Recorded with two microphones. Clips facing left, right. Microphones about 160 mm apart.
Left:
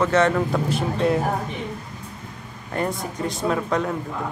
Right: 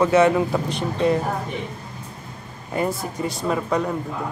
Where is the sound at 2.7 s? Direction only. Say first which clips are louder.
Right 2 dB; 5° right (ahead or behind).